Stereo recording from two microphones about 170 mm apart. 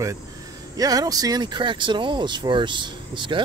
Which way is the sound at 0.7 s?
20° right (ahead or behind).